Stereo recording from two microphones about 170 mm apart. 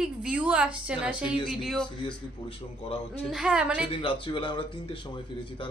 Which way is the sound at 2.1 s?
35° left (ahead or behind).